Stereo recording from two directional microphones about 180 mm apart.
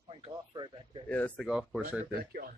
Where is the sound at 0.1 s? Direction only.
25° right (ahead or behind).